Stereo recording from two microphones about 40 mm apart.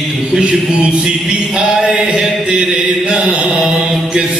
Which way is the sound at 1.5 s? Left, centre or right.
Right.